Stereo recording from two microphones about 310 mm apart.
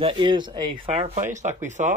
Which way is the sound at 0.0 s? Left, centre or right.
Centre.